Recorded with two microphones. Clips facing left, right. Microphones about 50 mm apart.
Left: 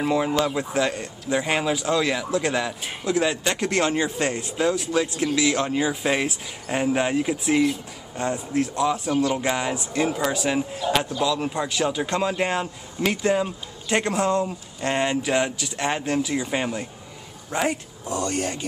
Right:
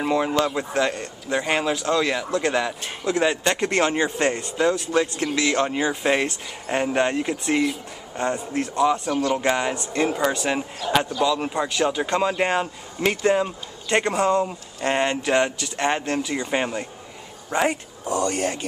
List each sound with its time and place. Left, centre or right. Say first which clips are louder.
0.0 s speech: right 1 dB; centre
18.0 s speech: right 4 dB; right
18.3 s speech: right 2 dB; centre